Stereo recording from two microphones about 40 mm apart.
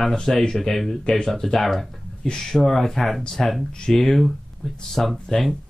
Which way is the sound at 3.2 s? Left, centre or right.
Centre.